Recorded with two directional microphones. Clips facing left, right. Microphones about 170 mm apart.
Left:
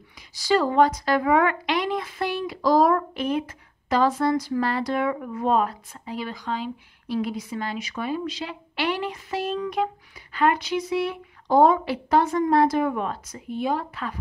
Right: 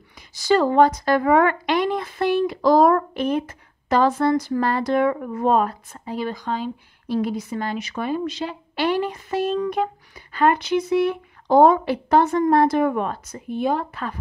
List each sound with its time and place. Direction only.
0.5 s speech: 45° right (ahead or behind)